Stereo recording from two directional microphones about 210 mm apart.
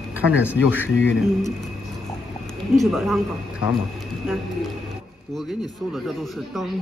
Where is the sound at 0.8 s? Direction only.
65° left (ahead or behind).